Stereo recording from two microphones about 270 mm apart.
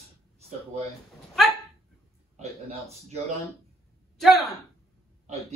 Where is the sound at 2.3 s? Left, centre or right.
Right.